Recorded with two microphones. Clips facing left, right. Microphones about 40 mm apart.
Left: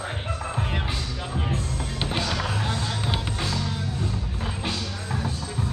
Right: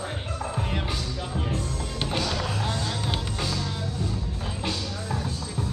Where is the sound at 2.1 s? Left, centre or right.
Centre.